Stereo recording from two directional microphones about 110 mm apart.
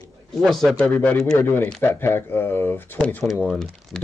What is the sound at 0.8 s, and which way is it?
Speech, 15° left (ahead or behind).